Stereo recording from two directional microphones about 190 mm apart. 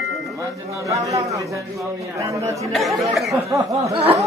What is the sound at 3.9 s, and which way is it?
Speech, 30° right (ahead or behind).